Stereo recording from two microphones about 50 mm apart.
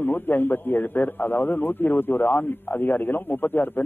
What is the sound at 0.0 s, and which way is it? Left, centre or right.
A man's voice, left.